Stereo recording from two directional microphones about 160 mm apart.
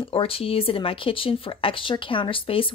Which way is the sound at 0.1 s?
35° left (ahead or behind).